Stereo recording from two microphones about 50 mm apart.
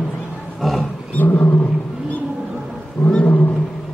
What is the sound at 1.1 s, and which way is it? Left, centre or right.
Roaring cats, left.